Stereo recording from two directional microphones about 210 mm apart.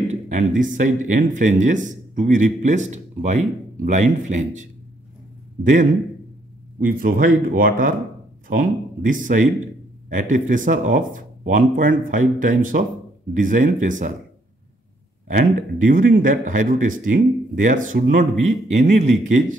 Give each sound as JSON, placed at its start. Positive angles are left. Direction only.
{"t": 0.1, "sound": "speech", "side_deg": -35}
{"t": 15.2, "sound": "speech", "side_deg": -40}